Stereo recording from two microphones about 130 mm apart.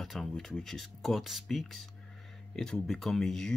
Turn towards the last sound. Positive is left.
turn(degrees=5)  # may be behind; listen again after turning